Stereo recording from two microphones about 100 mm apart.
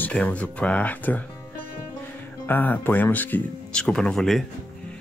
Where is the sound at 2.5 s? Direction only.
20° left (ahead or behind); by 4.4 s centre (ahead or behind).